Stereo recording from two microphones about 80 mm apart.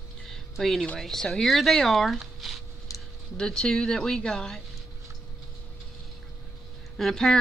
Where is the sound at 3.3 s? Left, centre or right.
Centre.